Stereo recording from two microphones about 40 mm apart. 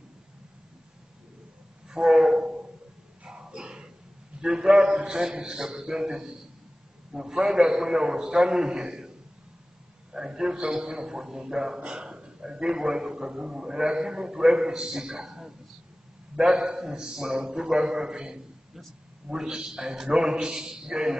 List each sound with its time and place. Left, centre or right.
1.9 s train: centre
3.3 s a sound: right
4.4 s a man's voice: centre
10.1 s a man's voice: centre
16.3 s a man's voice: right